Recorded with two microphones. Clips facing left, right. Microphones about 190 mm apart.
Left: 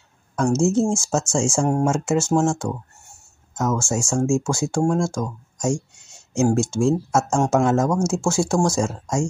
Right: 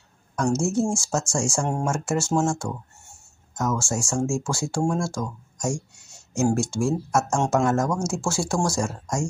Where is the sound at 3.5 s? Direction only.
20° left (ahead or behind).